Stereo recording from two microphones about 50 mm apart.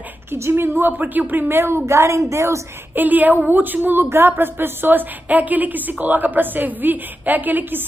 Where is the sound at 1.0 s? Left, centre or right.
Right.